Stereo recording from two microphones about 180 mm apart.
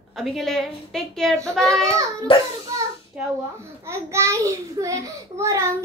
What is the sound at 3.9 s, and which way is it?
A child's voice, 15° right (ahead or behind).